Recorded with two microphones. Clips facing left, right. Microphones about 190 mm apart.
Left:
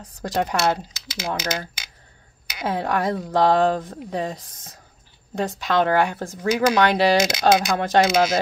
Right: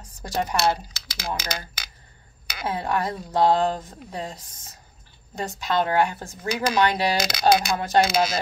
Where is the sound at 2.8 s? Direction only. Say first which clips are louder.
Left 3 dB; 70° left (ahead or behind).